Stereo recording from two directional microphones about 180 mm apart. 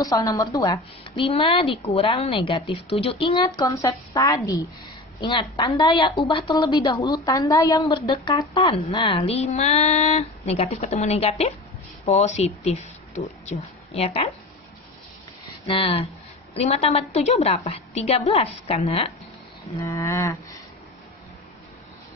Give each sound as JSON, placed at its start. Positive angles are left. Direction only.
{"t": 0.0, "sound": "a woman's voice", "side_deg": 20}
{"t": 15.7, "sound": "speech", "side_deg": 30}
{"t": 19.8, "sound": "a sound", "side_deg": 15}